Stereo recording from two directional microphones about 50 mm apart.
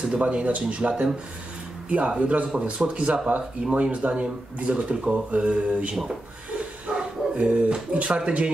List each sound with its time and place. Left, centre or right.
0.1 s speech: right